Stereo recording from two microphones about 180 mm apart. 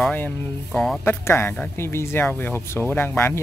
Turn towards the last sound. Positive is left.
turn(degrees=10)  # may be behind; listen again after turning